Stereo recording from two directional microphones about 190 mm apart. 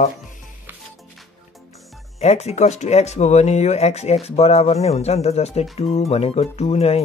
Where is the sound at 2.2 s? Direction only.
35° left (ahead or behind).